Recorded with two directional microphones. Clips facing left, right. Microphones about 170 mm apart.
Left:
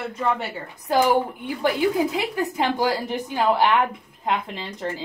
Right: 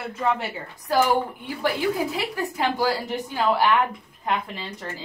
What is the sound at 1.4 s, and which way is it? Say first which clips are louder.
Speech: left 3 dB; 20° left (ahead or behind).